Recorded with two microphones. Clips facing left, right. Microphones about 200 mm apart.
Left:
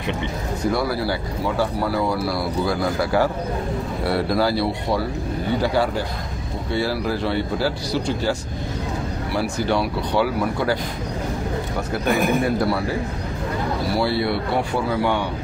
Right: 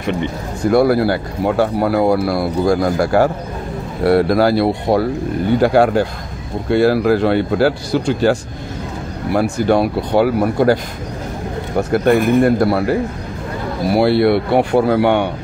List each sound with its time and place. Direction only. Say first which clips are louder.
0.7 s speech: right 10 dB; 55° right (ahead or behind)
13.9 s speech: right 11 dB; 65° right (ahead or behind)